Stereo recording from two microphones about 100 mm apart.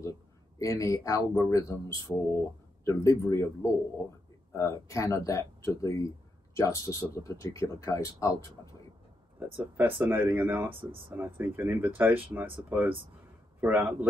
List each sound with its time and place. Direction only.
0.6 s speech: 35° left (ahead or behind)
9.6 s a man's voice: 20° right (ahead or behind)